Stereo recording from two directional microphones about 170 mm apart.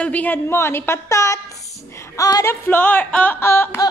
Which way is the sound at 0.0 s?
10° left (ahead or behind).